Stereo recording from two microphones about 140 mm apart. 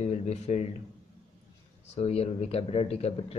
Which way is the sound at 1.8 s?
50° left (ahead or behind).